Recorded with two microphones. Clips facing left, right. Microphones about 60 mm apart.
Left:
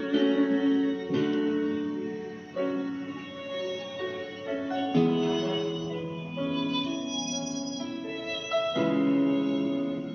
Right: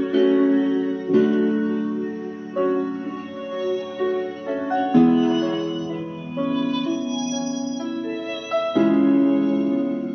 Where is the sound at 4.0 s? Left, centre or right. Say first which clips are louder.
Right 11 dB; right.